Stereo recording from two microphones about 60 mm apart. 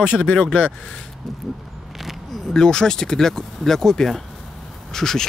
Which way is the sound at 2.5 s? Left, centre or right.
Centre.